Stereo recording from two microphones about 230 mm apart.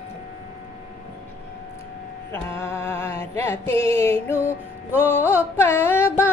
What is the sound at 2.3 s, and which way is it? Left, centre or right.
Music, centre.